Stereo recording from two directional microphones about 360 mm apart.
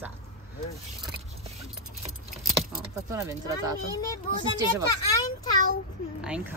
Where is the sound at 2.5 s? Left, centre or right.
Right.